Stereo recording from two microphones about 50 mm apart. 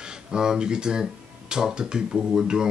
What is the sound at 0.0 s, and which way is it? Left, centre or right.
Speech, centre.